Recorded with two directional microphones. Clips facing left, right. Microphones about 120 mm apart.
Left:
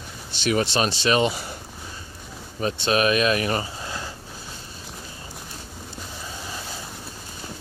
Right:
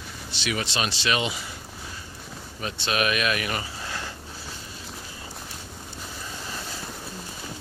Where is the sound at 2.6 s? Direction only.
35° left (ahead or behind).